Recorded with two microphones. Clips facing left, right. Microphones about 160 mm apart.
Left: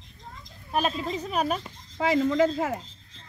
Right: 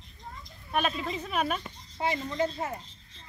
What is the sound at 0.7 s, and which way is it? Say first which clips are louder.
Speech: left 3 dB; 35° left (ahead or behind).